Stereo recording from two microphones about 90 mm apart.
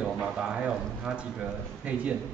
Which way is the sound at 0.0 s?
10° right (ahead or behind).